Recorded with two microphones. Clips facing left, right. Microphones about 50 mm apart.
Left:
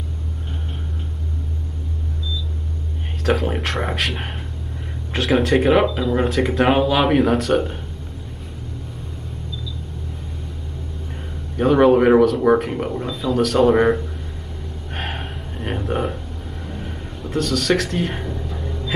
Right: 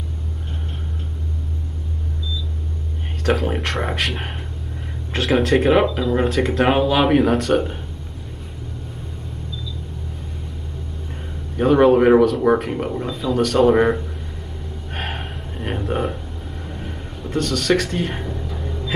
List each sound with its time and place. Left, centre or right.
3.3 s speech: centre
11.5 s speech: centre
15.0 s a sound: centre